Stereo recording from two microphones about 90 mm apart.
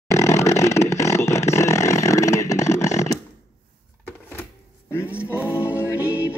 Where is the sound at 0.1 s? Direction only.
35° left (ahead or behind).